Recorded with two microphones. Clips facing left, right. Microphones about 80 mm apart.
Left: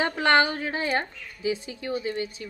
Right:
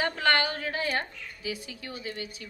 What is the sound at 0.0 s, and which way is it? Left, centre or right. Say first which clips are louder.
A woman's voice: left 5 dB; left.